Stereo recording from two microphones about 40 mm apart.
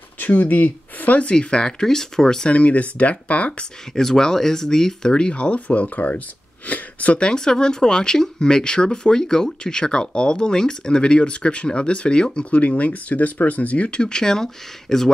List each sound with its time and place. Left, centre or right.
0.2 s speech: left
1.2 s speech: left
2.5 s speech: left
3.9 s speech: centre; by 6.2 s left
6.7 s a sound: left
7.2 s speech: left